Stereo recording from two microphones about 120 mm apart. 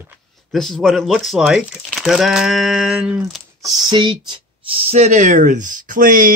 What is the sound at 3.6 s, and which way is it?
Speech, 35° right (ahead or behind).